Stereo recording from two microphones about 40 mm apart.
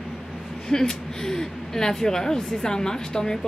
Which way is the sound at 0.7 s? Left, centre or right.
Centre.